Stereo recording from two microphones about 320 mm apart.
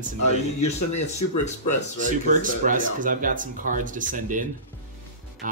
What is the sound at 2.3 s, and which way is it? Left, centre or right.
Speech, right.